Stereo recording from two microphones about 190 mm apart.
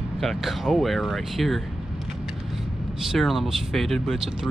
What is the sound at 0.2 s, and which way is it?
Speech, centre (ahead or behind).